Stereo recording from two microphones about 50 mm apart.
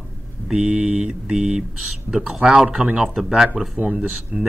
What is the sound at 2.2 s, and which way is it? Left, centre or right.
Speech, centre.